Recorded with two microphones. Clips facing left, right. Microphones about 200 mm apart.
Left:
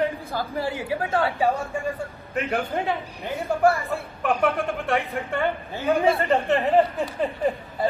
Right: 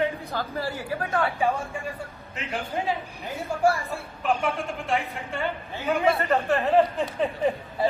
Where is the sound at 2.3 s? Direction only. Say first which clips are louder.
Left 5 dB; 55° left (ahead or behind).